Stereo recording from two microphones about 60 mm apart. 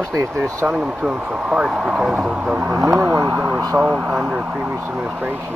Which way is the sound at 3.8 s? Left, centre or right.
Centre.